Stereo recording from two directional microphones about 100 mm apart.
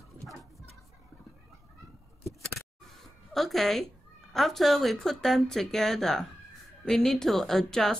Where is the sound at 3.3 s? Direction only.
Centre (ahead or behind).